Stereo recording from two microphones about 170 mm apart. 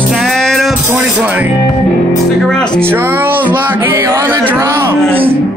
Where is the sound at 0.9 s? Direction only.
10° right (ahead or behind).